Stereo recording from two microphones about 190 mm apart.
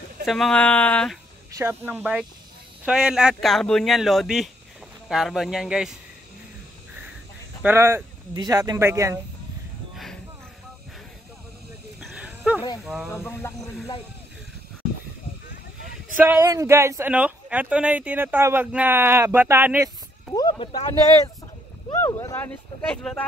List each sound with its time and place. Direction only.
0.2 s speech: centre (ahead or behind)
1.6 s speech: 10° right (ahead or behind)
7.6 s speech: 15° right (ahead or behind)
9.9 s music: centre (ahead or behind)
12.0 s a sound: 5° right (ahead or behind)
12.8 s speech: 5° right (ahead or behind)
13.1 s speech: 10° left (ahead or behind)
16.2 s speech: 10° right (ahead or behind)
20.3 s speech: 25° left (ahead or behind)
21.9 s speech: 15° left (ahead or behind)